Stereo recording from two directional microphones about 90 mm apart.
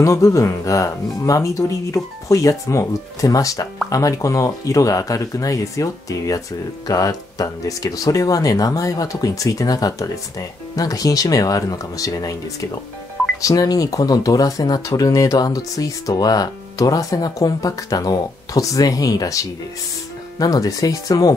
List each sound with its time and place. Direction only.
0.0 s speech: 35° left (ahead or behind)
13.4 s speech: 40° left (ahead or behind)